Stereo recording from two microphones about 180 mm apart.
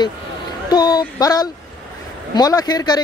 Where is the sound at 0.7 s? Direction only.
20° left (ahead or behind).